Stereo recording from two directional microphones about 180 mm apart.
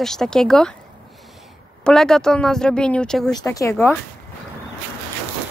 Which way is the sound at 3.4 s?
15° left (ahead or behind).